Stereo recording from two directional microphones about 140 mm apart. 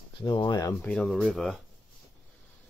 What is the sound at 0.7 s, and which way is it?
Speech, 10° left (ahead or behind).